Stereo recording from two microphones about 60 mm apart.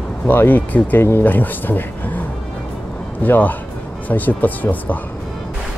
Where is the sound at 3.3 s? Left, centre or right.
Left.